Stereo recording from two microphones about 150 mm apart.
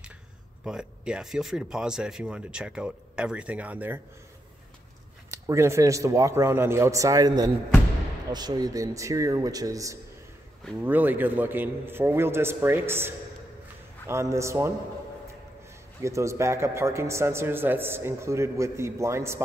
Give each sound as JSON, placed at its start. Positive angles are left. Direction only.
{"t": 0.7, "sound": "speech", "side_deg": -5}
{"t": 5.3, "sound": "a man's voice", "side_deg": -20}
{"t": 10.8, "sound": "a man's voice", "side_deg": -10}
{"t": 16.0, "sound": "a man's voice", "side_deg": -20}